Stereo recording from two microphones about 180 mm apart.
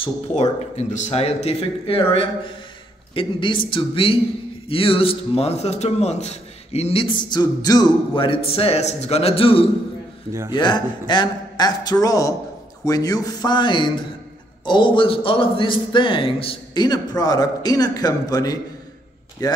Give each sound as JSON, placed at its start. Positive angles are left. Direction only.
{"t": 0.0, "sound": "a man's voice", "side_deg": 35}